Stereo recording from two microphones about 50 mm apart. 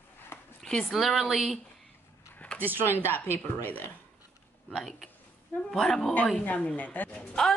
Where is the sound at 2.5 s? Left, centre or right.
Right.